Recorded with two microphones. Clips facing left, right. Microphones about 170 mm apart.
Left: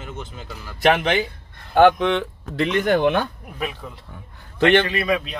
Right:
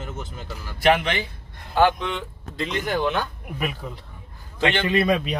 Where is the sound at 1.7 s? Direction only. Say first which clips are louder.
Left 6 dB; 65° left (ahead or behind).